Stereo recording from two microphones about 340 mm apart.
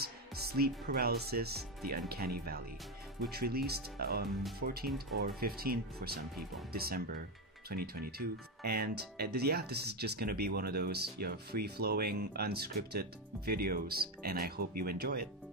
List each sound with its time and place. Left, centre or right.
0.0 s speech: right